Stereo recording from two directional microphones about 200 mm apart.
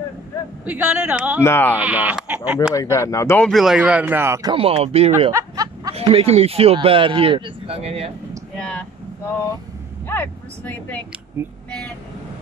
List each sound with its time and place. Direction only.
0.7 s speech: 5° right (ahead or behind)
1.4 s speech: 10° left (ahead or behind)
1.8 s speech: 5° right (ahead or behind)
2.7 s speech: 15° left (ahead or behind); by 5.1 s 30° right (ahead or behind)
5.3 s a sound: 15° right (ahead or behind)
5.9 s speech: 30° right (ahead or behind)
8.5 s speech: 5° left (ahead or behind)
10.0 s speech: 10° left (ahead or behind)